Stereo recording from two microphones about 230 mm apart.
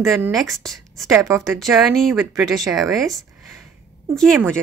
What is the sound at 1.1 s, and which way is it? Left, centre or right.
Speech, centre.